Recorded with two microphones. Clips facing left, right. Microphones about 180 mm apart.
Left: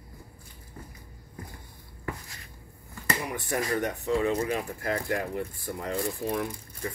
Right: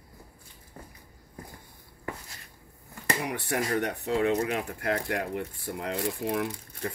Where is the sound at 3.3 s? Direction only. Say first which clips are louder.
Even; 70° right (ahead or behind).